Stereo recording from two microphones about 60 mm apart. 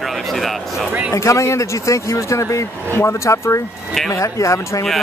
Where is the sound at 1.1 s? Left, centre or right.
Left.